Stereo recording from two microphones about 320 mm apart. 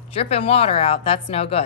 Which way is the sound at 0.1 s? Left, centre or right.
Centre.